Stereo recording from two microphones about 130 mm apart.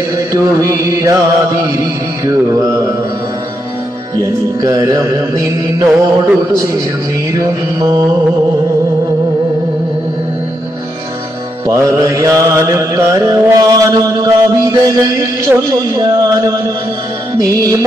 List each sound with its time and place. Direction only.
0.3 s mantra: 25° right (ahead or behind)
4.2 s mantra: 30° right (ahead or behind)
7.3 s mantra: 30° right (ahead or behind)
11.6 s music: 25° right (ahead or behind)
15.4 s mantra: 25° right (ahead or behind)